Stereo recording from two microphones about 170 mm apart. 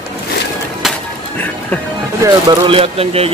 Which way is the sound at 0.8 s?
Centre (ahead or behind).